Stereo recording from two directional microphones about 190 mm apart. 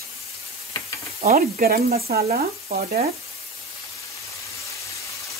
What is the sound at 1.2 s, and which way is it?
Speech, 50° right (ahead or behind).